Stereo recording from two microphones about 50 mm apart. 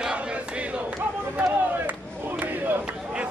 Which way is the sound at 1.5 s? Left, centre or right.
Right.